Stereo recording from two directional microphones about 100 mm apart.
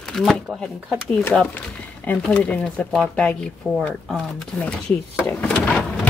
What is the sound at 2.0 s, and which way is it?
Speech, 15° left (ahead or behind).